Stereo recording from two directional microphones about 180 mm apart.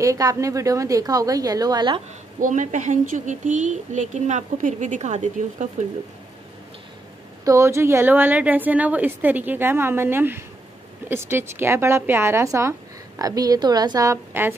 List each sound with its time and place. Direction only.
0.0 s a woman's voice: 20° right (ahead or behind)
2.4 s speech: 45° right (ahead or behind)
7.4 s a woman's voice: 15° right (ahead or behind)